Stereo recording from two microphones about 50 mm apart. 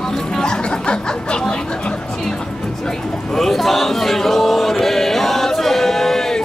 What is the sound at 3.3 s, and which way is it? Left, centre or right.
Speech, centre.